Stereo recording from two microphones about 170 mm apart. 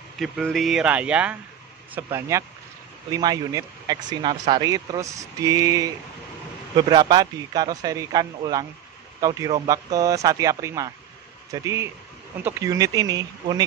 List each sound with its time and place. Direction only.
0.2 s speech: centre (ahead or behind); by 13.6 s 20° right (ahead or behind)